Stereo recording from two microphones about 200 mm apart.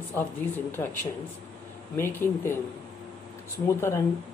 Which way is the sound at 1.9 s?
10° left (ahead or behind).